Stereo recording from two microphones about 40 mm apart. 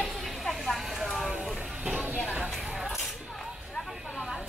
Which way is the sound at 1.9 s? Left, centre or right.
Right.